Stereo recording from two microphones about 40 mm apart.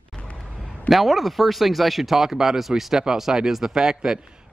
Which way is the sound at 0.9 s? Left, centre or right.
Centre.